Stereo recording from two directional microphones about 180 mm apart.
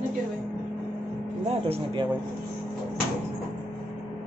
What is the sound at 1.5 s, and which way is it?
Speech, 35° right (ahead or behind).